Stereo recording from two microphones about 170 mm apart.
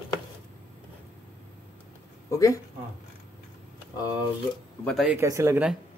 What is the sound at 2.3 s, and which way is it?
Speech, 20° left (ahead or behind).